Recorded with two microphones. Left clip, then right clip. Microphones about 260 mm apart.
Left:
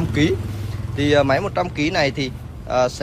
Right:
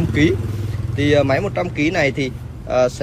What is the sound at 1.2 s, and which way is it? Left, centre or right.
Speech, centre.